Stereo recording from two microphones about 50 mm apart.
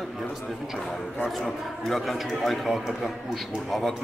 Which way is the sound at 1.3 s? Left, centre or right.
Centre.